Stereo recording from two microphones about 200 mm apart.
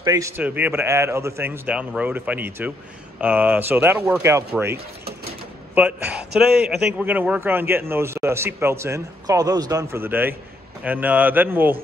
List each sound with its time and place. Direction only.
0.0 s a man's voice: 20° right (ahead or behind)
0.4 s a man's voice: 10° right (ahead or behind)
5.8 s a man's voice: 5° right (ahead or behind)